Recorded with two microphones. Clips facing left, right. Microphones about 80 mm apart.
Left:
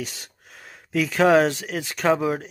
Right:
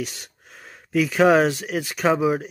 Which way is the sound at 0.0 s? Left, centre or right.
Centre.